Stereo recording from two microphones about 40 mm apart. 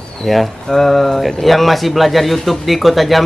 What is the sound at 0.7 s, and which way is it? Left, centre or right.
Speech, centre.